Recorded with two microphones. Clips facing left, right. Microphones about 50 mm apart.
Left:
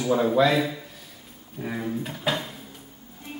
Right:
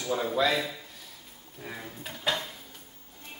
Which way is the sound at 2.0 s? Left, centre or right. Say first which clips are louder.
Left 4 dB; centre.